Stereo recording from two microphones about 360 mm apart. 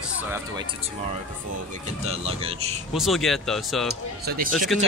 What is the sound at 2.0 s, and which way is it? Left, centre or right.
Speech, centre.